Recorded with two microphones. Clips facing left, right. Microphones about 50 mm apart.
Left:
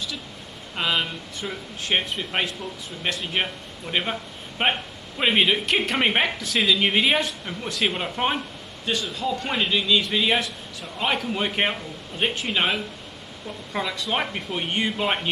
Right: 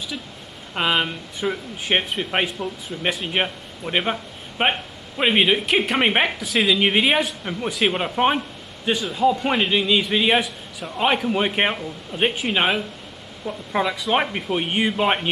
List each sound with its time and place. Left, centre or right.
0.7 s a man's voice: right